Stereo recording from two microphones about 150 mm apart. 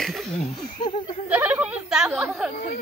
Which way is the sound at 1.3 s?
10° right (ahead or behind).